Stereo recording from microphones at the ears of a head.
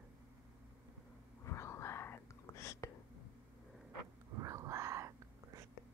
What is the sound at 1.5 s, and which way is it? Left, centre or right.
Whispering, left.